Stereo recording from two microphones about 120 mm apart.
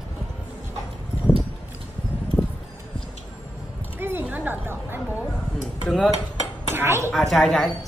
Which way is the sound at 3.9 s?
20° right (ahead or behind).